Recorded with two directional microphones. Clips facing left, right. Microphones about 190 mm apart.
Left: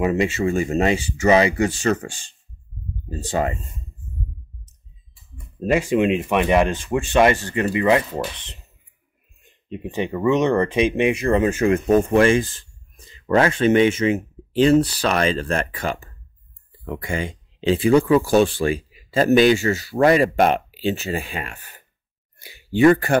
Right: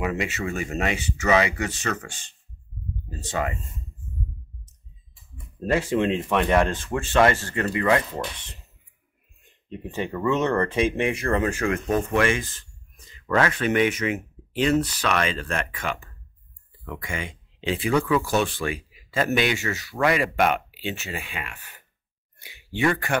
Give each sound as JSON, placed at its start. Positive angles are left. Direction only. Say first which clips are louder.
{"t": 0.0, "sound": "speech", "louder": "left 7 dB", "side_deg": 30}
{"t": 5.6, "sound": "speech", "louder": "left 4 dB", "side_deg": 15}
{"t": 9.7, "sound": "speech", "louder": "left 4 dB", "side_deg": 15}